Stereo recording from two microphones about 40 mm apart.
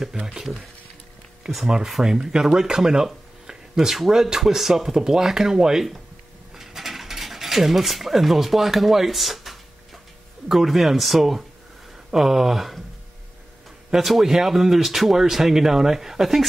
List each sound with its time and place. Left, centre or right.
0.0 s speech: centre
6.5 s mechanisms: centre
10.5 s speech: centre
13.8 s speech: centre